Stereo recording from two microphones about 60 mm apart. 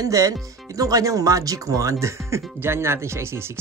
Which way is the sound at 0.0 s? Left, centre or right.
Right.